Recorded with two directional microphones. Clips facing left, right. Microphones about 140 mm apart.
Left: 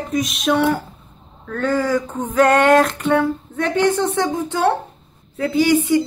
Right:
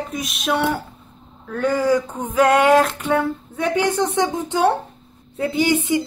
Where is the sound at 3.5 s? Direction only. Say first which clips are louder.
Left 2 dB; 10° right (ahead or behind).